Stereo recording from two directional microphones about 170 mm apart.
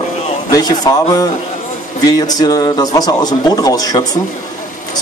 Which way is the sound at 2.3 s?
20° left (ahead or behind).